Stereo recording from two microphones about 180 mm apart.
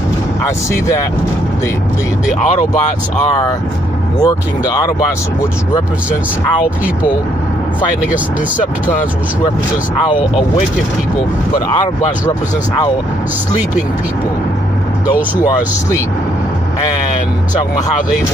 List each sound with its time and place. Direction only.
2.2 s speech: 45° left (ahead or behind)
4.2 s speech: 20° left (ahead or behind)
10.0 s speech: 30° left (ahead or behind)